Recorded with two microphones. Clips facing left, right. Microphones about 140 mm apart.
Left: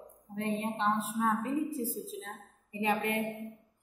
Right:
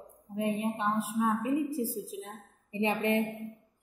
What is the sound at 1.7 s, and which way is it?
A woman's voice, 10° right (ahead or behind).